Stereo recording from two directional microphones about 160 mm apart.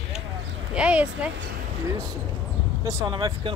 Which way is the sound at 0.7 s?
5° right (ahead or behind).